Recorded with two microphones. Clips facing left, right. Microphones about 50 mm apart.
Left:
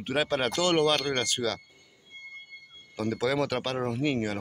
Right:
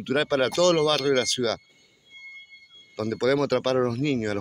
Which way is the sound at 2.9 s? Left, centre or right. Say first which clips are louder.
Right 4 dB; centre.